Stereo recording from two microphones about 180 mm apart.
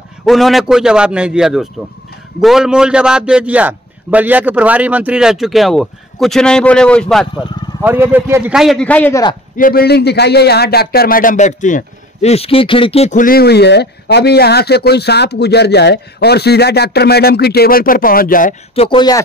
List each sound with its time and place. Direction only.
0.2 s a man's voice: centre (ahead or behind)
7.8 s a man's voice: 10° right (ahead or behind); by 9.2 s 10° left (ahead or behind)
9.6 s speech: 55° left (ahead or behind)
18.8 s speech: 25° left (ahead or behind)